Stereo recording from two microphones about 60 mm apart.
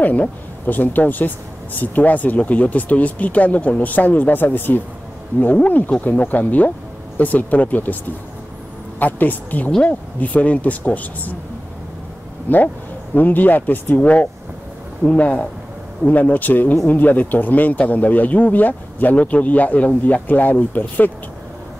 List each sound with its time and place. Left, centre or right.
0.0 s speech: left
9.0 s speech: left
12.5 s speech: left